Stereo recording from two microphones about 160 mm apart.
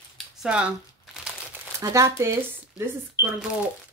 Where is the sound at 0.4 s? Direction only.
5° right (ahead or behind).